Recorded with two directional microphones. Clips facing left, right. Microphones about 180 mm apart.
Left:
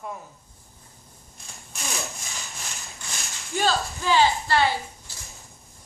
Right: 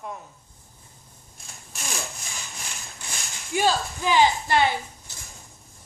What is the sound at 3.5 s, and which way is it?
Speech, 15° right (ahead or behind).